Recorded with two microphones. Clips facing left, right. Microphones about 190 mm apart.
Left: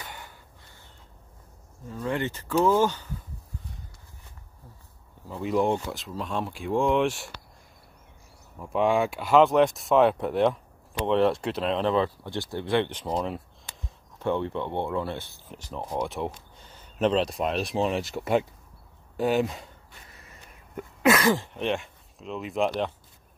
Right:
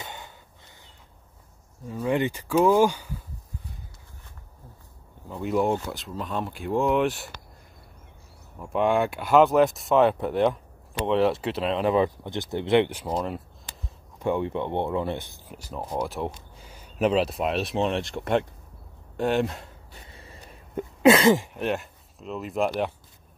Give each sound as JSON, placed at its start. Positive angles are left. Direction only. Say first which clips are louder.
{"t": 0.0, "sound": "a sound", "louder": "right 3 dB", "side_deg": -20}
{"t": 1.9, "sound": "speech", "louder": "right 4 dB", "side_deg": -15}
{"t": 5.3, "sound": "speech", "louder": "even", "side_deg": 0}
{"t": 8.5, "sound": "speech", "louder": "right 1 dB", "side_deg": 0}
{"t": 11.9, "sound": "speech", "louder": "right 2 dB", "side_deg": -15}
{"t": 14.1, "sound": "speech", "louder": "right 1 dB", "side_deg": -15}
{"t": 19.9, "sound": "a sound", "louder": "right 4 dB", "side_deg": -30}
{"t": 21.5, "sound": "speech", "louder": "right 1 dB", "side_deg": -5}